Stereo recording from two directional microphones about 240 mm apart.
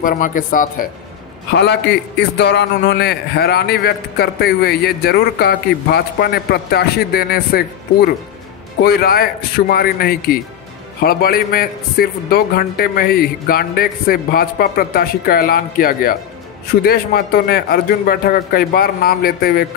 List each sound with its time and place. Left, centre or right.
0.0 s a man's voice: left
1.5 s a man's voice: left